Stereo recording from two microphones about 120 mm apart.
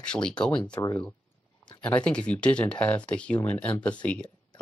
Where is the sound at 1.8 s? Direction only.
10° left (ahead or behind).